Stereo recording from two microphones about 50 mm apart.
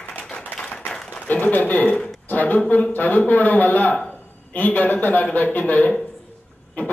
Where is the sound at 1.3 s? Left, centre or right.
Left.